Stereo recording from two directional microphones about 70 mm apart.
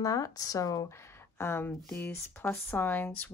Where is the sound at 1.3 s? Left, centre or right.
Left.